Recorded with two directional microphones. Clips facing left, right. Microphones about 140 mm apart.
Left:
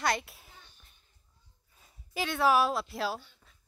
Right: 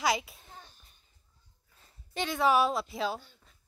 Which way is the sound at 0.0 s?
Centre (ahead or behind).